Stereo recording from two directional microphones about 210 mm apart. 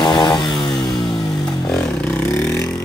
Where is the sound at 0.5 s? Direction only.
Centre (ahead or behind).